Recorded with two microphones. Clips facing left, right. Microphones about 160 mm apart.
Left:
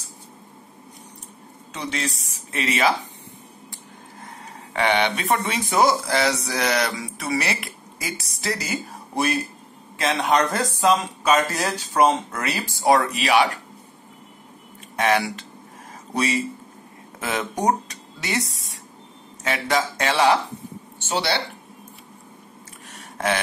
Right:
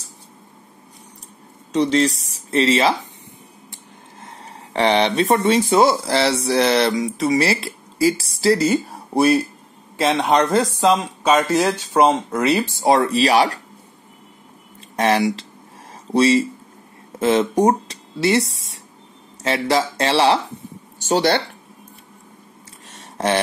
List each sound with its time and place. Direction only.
1.7 s speech: 35° right (ahead or behind)
4.7 s speech: 30° right (ahead or behind)
15.0 s speech: 35° right (ahead or behind)
21.0 s speech: 45° right (ahead or behind)
23.1 s a sound: 30° right (ahead or behind)